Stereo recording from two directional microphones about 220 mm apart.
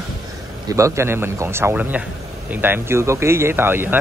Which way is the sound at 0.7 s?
15° right (ahead or behind).